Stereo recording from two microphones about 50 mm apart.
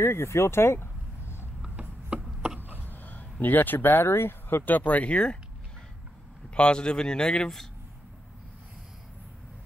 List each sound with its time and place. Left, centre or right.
0.0 s speech: left
1.8 s a sound: right
2.8 s speech: left
6.5 s speech: centre